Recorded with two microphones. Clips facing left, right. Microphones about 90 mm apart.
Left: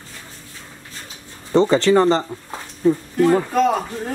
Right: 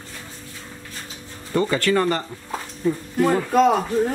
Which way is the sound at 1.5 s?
25° left (ahead or behind).